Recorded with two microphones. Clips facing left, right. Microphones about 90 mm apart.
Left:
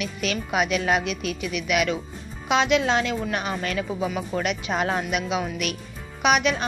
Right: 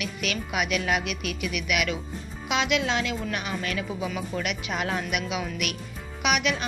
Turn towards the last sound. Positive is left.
turn(degrees=35)  # may be behind; listen again after turning